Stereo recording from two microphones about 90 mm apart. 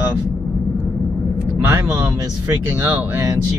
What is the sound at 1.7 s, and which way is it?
Speech, 30° right (ahead or behind).